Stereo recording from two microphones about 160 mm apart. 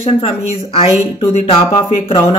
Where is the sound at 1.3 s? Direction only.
35° left (ahead or behind).